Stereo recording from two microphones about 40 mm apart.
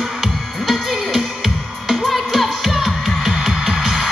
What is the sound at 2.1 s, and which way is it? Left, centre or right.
Music, centre.